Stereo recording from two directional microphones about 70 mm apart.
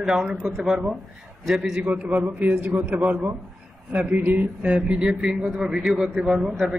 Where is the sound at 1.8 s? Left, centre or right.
Centre.